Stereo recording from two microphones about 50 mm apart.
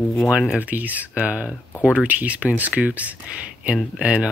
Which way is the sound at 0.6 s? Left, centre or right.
Right.